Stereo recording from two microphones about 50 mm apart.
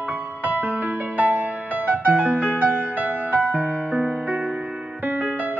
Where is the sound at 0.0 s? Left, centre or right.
Right.